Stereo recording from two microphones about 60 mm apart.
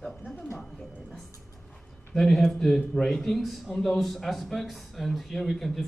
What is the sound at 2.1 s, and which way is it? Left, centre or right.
A man's voice, centre.